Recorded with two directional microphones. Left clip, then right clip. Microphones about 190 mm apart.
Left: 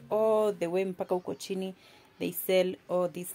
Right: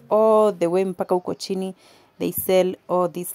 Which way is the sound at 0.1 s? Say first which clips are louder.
Right 10 dB; 40° right (ahead or behind).